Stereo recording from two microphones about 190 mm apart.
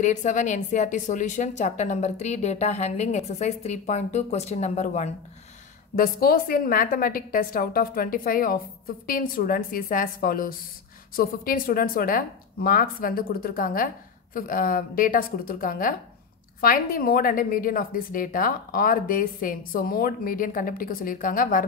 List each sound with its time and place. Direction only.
0.0 s a woman's voice: 40° left (ahead or behind)
5.9 s a woman's voice: 50° left (ahead or behind)